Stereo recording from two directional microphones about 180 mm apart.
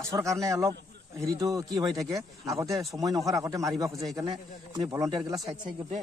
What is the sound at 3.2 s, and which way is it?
Speech, 20° right (ahead or behind).